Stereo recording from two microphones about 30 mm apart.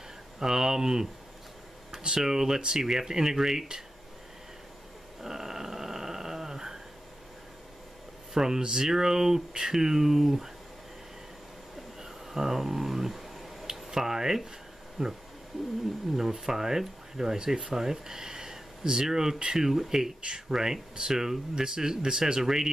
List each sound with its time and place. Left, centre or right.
0.4 s speech: centre
5.2 s a sound: centre
8.4 s speech: right
12.0 s finger snapping: centre
13.8 s speech: centre
16.2 s speech: centre
20.2 s speech: right
20.5 s speech: centre